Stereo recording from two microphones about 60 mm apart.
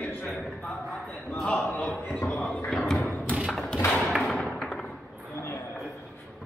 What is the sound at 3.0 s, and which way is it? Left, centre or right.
Thump, left.